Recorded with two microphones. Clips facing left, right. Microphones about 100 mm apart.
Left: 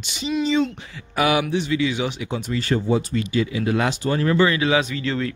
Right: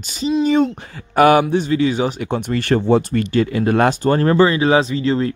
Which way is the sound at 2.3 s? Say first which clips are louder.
Right 5 dB; 60° right (ahead or behind).